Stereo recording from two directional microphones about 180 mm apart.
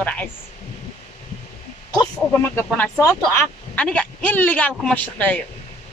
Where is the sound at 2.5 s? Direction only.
10° left (ahead or behind).